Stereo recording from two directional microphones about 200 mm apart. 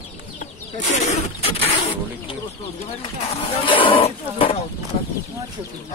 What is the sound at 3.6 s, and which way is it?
Speech, 25° left (ahead or behind).